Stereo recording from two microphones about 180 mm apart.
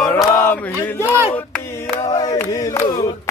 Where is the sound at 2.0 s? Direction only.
25° left (ahead or behind).